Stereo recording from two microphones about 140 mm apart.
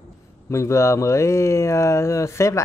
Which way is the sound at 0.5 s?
20° left (ahead or behind).